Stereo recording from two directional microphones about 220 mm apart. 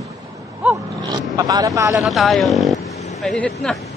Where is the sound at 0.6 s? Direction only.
Centre (ahead or behind).